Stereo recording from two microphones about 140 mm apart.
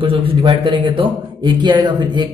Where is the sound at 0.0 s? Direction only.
40° right (ahead or behind).